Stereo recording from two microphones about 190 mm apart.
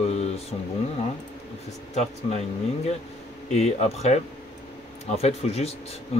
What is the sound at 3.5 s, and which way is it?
Speech, 35° left (ahead or behind).